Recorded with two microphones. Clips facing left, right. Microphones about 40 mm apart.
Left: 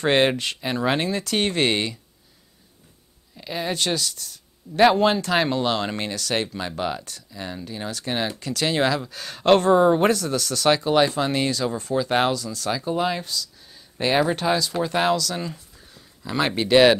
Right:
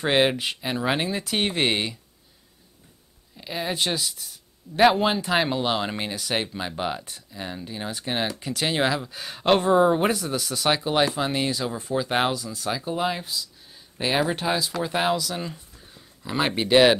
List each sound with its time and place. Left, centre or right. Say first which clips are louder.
0.0 s speech: left 2 dB; centre
3.3 s speech: left 1 dB; centre
4.7 s speech: left 2 dB; centre
10.1 s speech: left 3 dB; centre
13.2 s a sound: left 2 dB; centre
13.9 s speech: left 3 dB; centre